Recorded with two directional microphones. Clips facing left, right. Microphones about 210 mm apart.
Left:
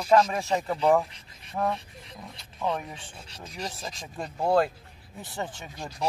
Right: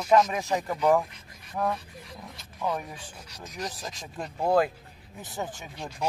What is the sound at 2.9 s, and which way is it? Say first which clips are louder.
Speech: even; 30° left (ahead or behind).